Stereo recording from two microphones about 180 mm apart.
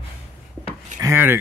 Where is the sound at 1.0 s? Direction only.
15° right (ahead or behind).